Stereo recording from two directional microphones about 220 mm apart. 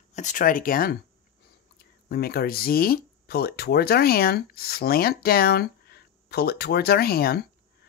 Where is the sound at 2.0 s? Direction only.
45° left (ahead or behind).